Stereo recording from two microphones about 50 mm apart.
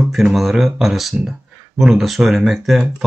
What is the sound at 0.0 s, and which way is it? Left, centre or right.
Speech, centre.